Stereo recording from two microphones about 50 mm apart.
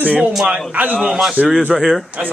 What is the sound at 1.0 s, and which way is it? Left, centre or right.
A man's voice, centre.